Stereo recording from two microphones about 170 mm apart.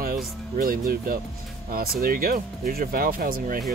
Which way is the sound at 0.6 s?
55° right (ahead or behind).